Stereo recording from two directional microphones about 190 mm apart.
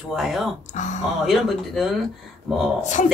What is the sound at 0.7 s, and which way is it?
Speech, 40° left (ahead or behind).